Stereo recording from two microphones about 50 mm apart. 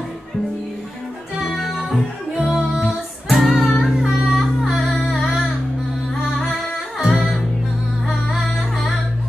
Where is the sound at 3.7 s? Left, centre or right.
Centre.